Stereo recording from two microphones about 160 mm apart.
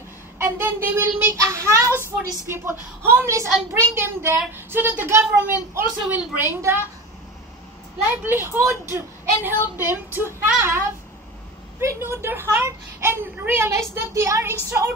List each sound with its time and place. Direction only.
0.4 s a child's voice: 15° right (ahead or behind)
8.1 s a child's voice: 15° right (ahead or behind)
11.8 s a child's voice: 15° right (ahead or behind)